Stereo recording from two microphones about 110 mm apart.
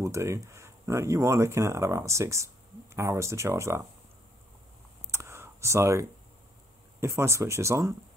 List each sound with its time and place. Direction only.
0.0 s speech: 25° right (ahead or behind)
5.1 s a sound: 25° right (ahead or behind)
7.0 s speech: 25° right (ahead or behind)